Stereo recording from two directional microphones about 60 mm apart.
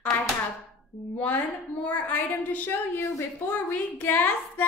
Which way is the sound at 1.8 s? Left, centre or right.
Left.